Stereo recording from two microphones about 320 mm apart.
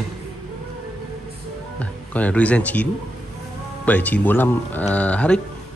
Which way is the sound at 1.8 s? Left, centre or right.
Centre.